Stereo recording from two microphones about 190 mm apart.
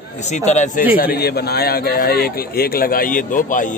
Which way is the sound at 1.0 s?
55° left (ahead or behind).